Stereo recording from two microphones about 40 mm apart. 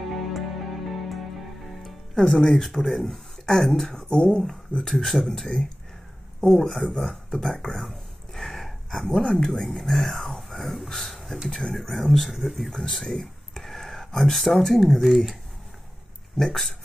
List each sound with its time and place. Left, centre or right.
0.3 s music: centre
2.1 s speech: centre
3.9 s speech: centre
4.8 s speech: centre
7.6 s a sound: centre
9.4 s speech: centre
16.4 s speech: centre